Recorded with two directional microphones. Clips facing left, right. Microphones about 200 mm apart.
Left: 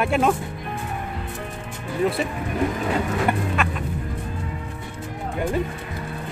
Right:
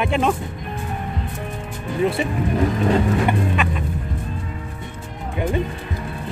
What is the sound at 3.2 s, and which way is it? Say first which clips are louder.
Speech: right 2 dB; centre (ahead or behind).